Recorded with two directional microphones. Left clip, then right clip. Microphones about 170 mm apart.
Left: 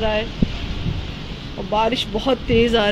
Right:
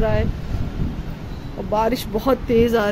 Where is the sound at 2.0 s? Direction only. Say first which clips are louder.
Even; 20° right (ahead or behind).